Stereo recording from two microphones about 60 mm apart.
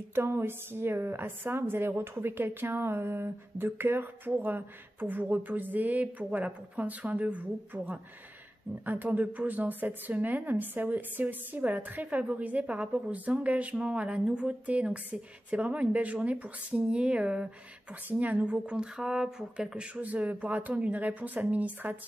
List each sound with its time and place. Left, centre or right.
0.1 s a woman's voice: right; by 19.9 s centre
20.0 s speech: right